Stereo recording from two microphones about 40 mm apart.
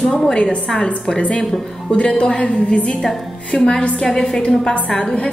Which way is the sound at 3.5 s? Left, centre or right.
Centre.